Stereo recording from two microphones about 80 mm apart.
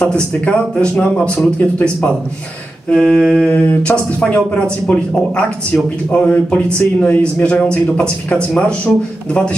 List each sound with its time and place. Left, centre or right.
0.1 s speech: centre
2.9 s speech: centre
3.4 s speech: centre